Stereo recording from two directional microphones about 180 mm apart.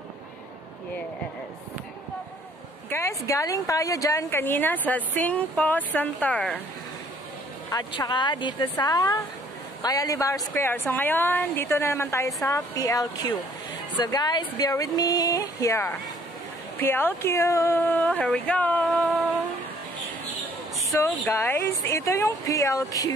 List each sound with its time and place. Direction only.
2.9 s a woman's voice: 15° left (ahead or behind)
7.7 s a woman's voice: 20° left (ahead or behind)
19.0 s humming: 10° right (ahead or behind)
21.3 s a woman's voice: 10° left (ahead or behind)